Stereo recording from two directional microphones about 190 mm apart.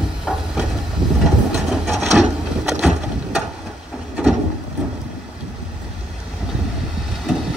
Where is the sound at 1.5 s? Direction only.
Centre (ahead or behind).